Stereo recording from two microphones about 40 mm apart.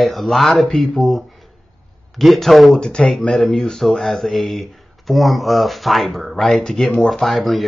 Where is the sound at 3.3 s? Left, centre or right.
Centre.